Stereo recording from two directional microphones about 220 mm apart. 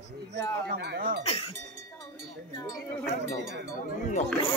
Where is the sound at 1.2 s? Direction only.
25° left (ahead or behind).